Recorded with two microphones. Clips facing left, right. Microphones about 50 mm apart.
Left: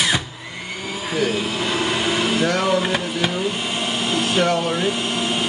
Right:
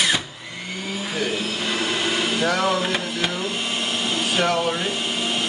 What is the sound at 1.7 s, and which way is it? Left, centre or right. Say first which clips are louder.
Vacuum cleaner: left 2 dB; centre.